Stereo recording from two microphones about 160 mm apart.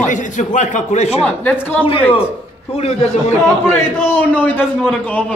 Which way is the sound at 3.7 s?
10° left (ahead or behind).